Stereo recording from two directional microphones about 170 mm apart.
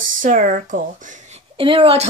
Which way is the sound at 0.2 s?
50° right (ahead or behind).